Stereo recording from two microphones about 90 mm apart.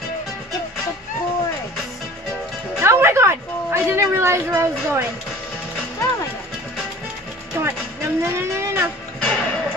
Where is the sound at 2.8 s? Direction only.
30° right (ahead or behind).